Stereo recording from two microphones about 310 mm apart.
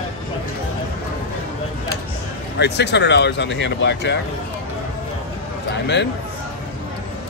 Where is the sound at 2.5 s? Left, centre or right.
Left.